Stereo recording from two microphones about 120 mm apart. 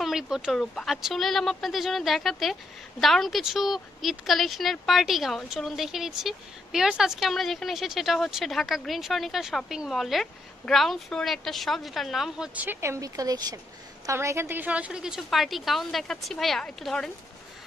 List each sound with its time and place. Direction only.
0.0 s a woman's voice: centre (ahead or behind)
12.5 s a woman's voice: 20° right (ahead or behind); by 17.1 s 5° left (ahead or behind)